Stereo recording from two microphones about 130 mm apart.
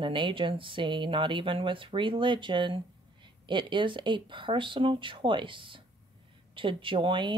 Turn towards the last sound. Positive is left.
turn(degrees=-40)  # may be behind; listen again after turning